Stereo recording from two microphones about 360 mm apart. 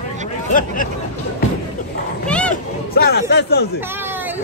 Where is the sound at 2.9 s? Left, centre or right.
Left.